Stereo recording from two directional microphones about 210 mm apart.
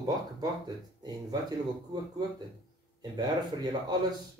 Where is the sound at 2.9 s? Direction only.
20° right (ahead or behind).